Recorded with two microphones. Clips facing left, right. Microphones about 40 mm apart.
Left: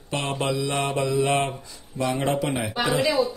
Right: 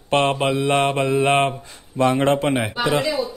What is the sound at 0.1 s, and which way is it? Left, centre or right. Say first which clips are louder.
Mantra: right 8 dB; right.